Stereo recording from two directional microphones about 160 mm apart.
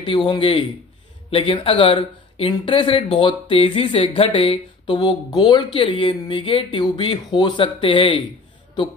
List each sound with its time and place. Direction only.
0.0 s speech: 30° left (ahead or behind)